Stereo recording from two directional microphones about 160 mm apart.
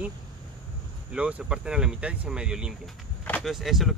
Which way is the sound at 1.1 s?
5° right (ahead or behind).